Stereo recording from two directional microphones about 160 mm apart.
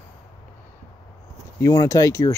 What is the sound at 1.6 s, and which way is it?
Speech, 20° left (ahead or behind).